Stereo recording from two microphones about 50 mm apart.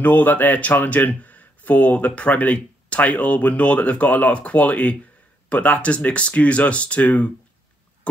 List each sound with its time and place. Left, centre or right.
0.0 s speech: left